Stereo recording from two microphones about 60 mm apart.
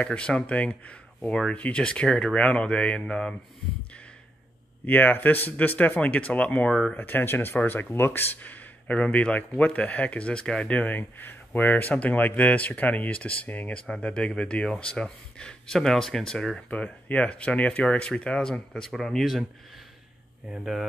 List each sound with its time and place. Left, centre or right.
0.0 s speech: left
4.8 s speech: left; by 7.0 s centre
7.0 s speech: left
11.0 s speech: left; by 16.6 s centre
16.6 s speech: left; by 19.4 s centre
20.4 s speech: centre